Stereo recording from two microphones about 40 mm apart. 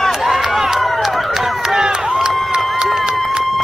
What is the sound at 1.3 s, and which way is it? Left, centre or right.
Run, centre.